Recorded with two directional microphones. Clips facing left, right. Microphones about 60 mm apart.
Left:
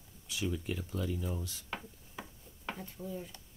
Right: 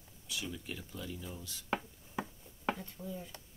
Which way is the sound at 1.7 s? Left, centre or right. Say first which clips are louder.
Right 6 dB; right.